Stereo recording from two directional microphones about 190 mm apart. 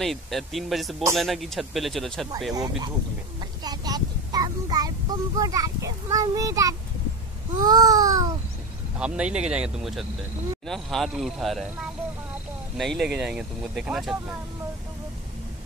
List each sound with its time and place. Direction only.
0.0 s speech: centre (ahead or behind)
2.5 s babbling: 20° right (ahead or behind)
3.6 s child singing: 20° right (ahead or behind)
7.6 s babbling: 20° right (ahead or behind)
8.9 s speech: 5° right (ahead or behind)
12.7 s speech: centre (ahead or behind)